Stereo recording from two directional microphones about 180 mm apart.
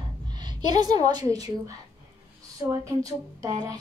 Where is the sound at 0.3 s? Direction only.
25° right (ahead or behind).